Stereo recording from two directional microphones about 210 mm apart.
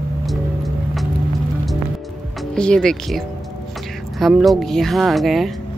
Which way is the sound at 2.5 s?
5° left (ahead or behind).